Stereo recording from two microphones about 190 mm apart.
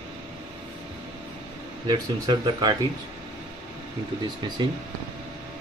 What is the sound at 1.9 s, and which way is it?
Speech, 20° right (ahead or behind).